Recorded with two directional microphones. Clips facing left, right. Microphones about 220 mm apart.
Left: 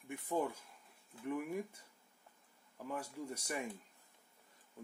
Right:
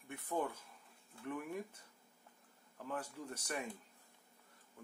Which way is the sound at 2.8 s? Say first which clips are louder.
Left 1 dB; 10° left (ahead or behind).